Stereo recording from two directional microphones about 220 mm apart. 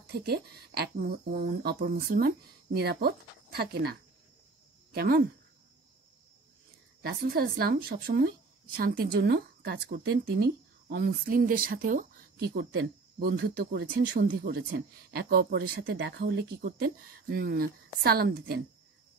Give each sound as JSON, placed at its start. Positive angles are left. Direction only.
{"t": 0.1, "sound": "speech", "side_deg": -45}
{"t": 4.9, "sound": "speech", "side_deg": -45}
{"t": 7.0, "sound": "speech", "side_deg": -45}